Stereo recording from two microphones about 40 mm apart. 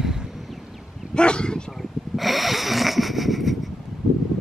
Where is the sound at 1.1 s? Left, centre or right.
Left.